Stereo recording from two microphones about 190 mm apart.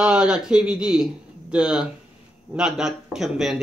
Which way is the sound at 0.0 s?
5° right (ahead or behind).